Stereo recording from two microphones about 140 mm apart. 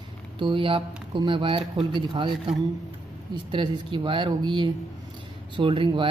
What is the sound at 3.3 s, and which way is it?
Speech, 35° right (ahead or behind).